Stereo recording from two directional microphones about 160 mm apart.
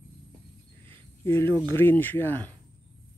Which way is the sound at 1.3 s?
15° left (ahead or behind).